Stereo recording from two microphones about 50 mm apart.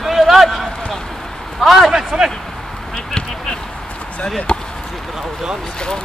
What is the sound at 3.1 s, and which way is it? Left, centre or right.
Speech, centre.